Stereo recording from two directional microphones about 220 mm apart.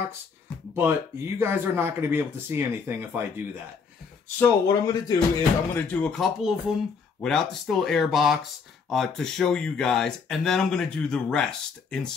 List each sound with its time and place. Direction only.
0.7 s speech: 10° right (ahead or behind)
4.4 s speech: 15° left (ahead or behind)
6.1 s speech: centre (ahead or behind)